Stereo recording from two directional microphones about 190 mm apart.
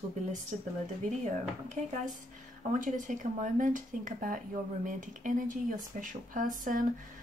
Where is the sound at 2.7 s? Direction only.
40° right (ahead or behind).